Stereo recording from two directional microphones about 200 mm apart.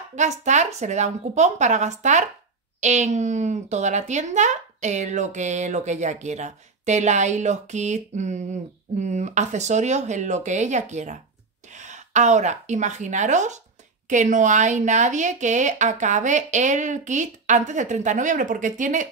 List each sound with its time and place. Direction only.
0.1 s a woman's voice: 35° right (ahead or behind)